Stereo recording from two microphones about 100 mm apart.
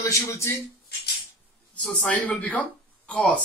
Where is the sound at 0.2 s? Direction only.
25° left (ahead or behind).